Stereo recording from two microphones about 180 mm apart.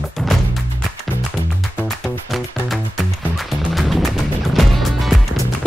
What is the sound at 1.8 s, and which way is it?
Music, centre (ahead or behind).